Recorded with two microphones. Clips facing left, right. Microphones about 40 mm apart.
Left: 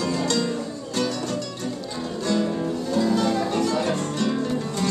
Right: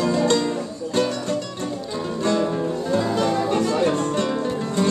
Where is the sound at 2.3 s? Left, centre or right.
Centre.